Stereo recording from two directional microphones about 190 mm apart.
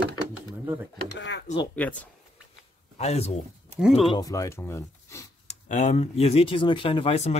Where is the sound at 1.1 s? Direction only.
70° left (ahead or behind).